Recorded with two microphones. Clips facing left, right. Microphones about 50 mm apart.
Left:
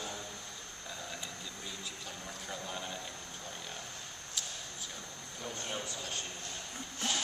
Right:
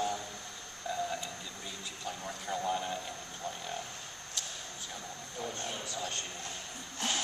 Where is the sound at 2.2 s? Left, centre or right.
Centre.